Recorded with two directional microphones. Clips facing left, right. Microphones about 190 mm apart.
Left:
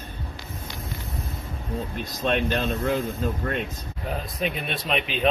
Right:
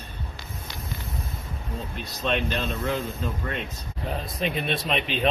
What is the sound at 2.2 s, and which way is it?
Speech, 50° left (ahead or behind).